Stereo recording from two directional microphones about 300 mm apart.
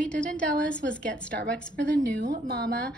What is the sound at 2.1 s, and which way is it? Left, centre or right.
Speech, right.